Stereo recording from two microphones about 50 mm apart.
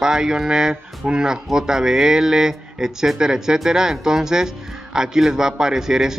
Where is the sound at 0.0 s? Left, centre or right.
Centre.